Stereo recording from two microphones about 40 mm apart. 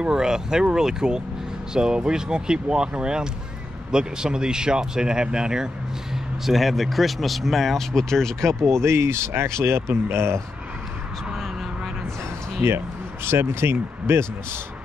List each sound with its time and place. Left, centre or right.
0.0 s speech: centre
6.4 s speech: centre
8.9 s speech: right
12.6 s speech: right